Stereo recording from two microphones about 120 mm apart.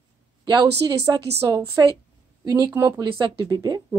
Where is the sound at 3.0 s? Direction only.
45° right (ahead or behind).